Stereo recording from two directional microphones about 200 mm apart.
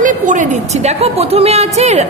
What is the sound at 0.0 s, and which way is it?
A woman's voice, 40° right (ahead or behind).